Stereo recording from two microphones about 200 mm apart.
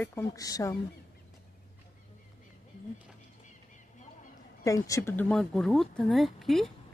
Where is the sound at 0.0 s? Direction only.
15° left (ahead or behind).